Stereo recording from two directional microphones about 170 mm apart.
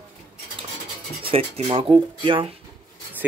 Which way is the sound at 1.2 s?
35° right (ahead or behind).